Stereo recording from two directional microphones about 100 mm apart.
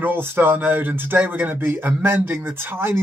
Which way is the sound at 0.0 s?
20° right (ahead or behind).